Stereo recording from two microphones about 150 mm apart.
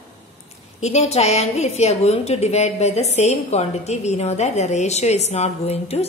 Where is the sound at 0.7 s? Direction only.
50° left (ahead or behind).